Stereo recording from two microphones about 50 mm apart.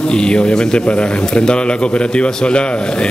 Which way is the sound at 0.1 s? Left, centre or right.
Centre.